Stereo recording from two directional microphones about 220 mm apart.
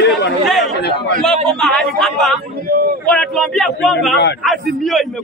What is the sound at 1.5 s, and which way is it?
A man's voice, 5° left (ahead or behind).